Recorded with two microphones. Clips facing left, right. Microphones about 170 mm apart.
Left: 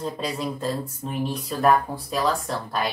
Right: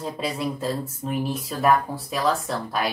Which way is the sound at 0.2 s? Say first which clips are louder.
Right 1 dB; 5° right (ahead or behind).